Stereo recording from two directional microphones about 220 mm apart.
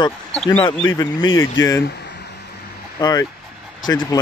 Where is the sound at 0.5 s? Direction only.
15° left (ahead or behind).